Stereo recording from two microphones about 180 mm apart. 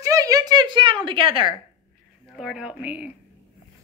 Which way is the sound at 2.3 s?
5° right (ahead or behind).